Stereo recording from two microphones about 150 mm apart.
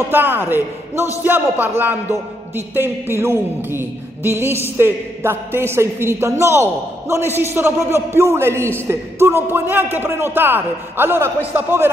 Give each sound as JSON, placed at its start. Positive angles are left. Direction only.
{"t": 0.1, "sound": "a man's voice", "side_deg": -15}